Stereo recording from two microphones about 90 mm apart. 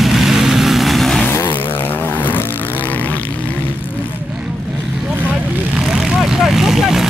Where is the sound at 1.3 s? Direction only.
25° left (ahead or behind).